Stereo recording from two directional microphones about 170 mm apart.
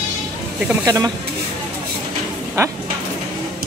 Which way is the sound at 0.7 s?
20° right (ahead or behind).